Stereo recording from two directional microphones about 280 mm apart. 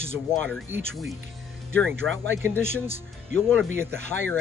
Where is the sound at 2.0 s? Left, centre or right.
Centre.